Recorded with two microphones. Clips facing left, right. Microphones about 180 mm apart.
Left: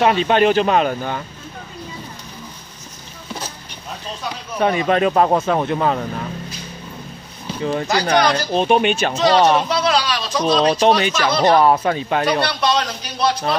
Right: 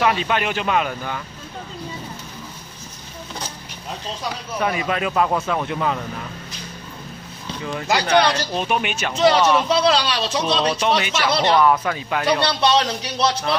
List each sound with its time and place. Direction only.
0.0 s speech: 30° left (ahead or behind)
4.6 s speech: 35° left (ahead or behind)
7.6 s speech: 35° left (ahead or behind)
9.8 s speech: 25° right (ahead or behind)
10.6 s speech: 35° left (ahead or behind)
12.4 s speech: 30° right (ahead or behind)